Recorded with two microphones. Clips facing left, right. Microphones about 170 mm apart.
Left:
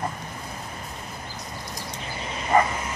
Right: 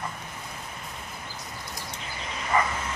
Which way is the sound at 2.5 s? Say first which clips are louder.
Left 5 dB; 35° left (ahead or behind).